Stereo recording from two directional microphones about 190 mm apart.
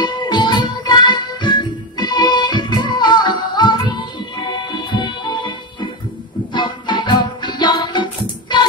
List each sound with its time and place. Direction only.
0.0 s music: 25° left (ahead or behind)